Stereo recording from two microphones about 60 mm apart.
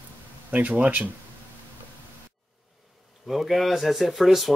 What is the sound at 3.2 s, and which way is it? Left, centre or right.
Speech, centre.